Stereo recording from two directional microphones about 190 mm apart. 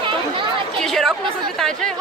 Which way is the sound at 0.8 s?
Centre (ahead or behind).